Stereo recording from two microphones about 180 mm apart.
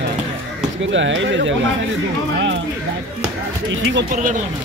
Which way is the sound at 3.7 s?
90° right.